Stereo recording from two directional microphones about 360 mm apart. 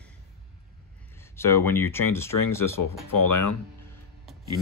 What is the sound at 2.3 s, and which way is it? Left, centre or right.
Speech, left.